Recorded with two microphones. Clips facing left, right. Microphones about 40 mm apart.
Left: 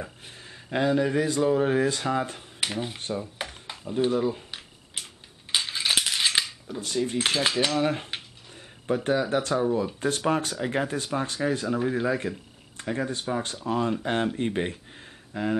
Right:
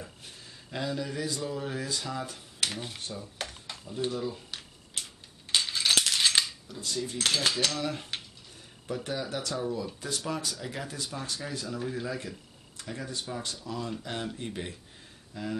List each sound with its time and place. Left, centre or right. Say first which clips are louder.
0.0 s speech: left 6 dB; left
2.6 s speech: left 4 dB; centre
3.0 s cutlery: left 8 dB; left
3.3 s a sound: left 3 dB; centre
4.1 s cutlery: left 8 dB; left
4.5 s a sound: left 2 dB; centre
6.8 s speech: left 6 dB; left
7.2 s cutlery: left 2 dB; centre
7.8 s speech: left 7 dB; left
9.9 s speech: left 9 dB; left